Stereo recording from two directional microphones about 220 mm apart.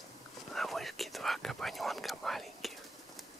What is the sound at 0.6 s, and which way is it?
Whispering, centre (ahead or behind).